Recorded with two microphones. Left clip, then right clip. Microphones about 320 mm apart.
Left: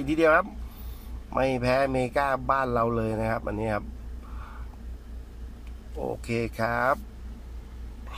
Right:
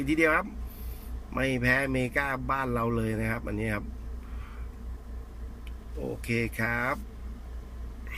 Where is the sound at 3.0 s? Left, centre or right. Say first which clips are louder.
Left 4 dB; left.